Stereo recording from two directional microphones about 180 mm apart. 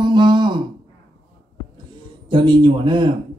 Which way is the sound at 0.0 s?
25° right (ahead or behind).